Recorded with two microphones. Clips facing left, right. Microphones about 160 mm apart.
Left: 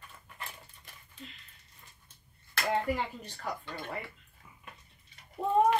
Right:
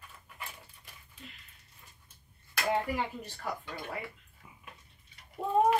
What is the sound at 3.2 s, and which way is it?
Speech, 5° right (ahead or behind).